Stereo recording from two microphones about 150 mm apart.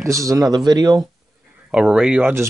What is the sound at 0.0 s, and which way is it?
Speech, 20° right (ahead or behind).